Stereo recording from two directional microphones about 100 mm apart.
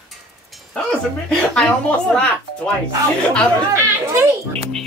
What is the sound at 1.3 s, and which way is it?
Speech, 10° left (ahead or behind).